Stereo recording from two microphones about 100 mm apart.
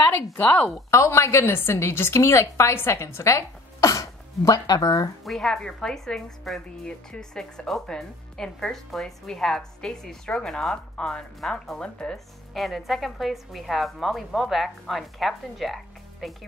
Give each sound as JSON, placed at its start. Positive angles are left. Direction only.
{"t": 0.0, "sound": "speech", "side_deg": 20}
{"t": 0.8, "sound": "a woman's voice", "side_deg": 30}
{"t": 5.2, "sound": "speech", "side_deg": 5}